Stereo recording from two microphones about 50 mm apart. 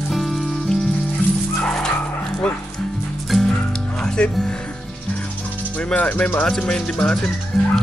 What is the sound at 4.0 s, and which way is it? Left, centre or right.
Music, centre.